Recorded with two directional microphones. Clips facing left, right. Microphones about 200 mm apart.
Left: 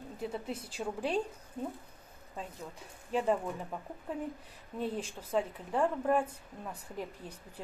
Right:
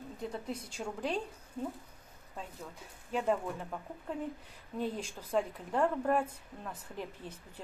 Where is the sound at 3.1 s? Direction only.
Centre (ahead or behind).